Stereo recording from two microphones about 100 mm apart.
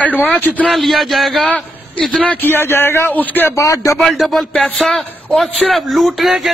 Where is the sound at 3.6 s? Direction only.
30° left (ahead or behind).